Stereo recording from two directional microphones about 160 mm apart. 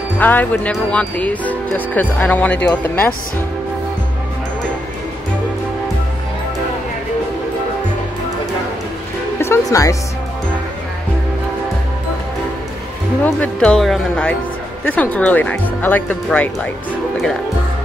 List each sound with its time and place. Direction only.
0.2 s speech: 10° left (ahead or behind)
9.4 s speech: 20° left (ahead or behind)
13.2 s speech: 5° left (ahead or behind)